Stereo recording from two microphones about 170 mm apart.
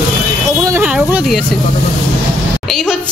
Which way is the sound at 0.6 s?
20° right (ahead or behind).